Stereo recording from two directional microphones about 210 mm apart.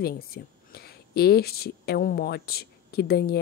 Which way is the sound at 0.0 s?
45° left (ahead or behind).